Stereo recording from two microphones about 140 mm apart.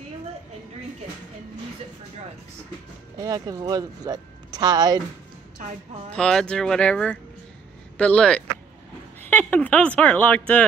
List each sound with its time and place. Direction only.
3.2 s speech: 30° right (ahead or behind)
5.6 s a woman's voice: 65° right (ahead or behind)
6.1 s speech: 5° left (ahead or behind)